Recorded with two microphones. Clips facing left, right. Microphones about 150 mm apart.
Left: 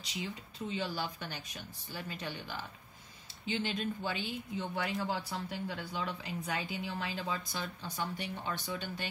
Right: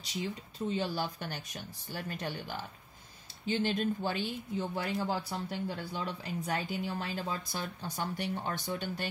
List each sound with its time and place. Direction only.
0.1 s speech: 45° right (ahead or behind)
3.4 s speech: 40° right (ahead or behind)